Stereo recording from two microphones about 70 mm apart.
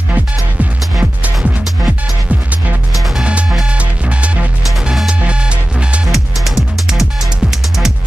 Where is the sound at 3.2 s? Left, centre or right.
Centre.